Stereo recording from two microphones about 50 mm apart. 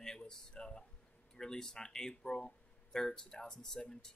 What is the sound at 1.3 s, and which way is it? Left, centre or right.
Speech, centre.